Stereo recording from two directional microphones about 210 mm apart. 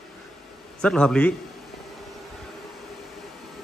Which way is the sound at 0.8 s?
5° left (ahead or behind).